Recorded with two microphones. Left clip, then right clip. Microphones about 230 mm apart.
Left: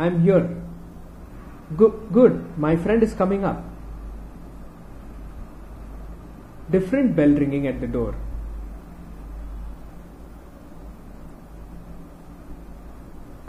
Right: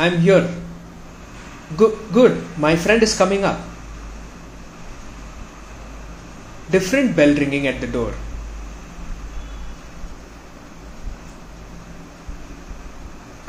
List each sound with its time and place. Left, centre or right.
0.0 s speech: centre
1.8 s speech: centre
6.7 s speech: centre